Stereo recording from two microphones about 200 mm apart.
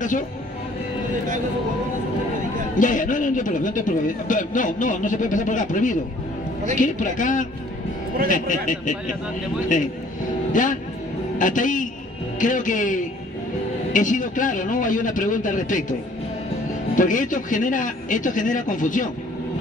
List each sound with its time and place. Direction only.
2.8 s a man's voice: 40° left (ahead or behind)
16.9 s speech: 40° left (ahead or behind)